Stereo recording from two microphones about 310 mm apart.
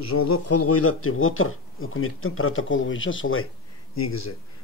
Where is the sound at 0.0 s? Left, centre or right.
Left.